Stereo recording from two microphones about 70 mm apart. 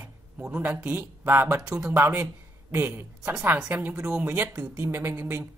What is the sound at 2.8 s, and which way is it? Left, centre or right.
Speech, right.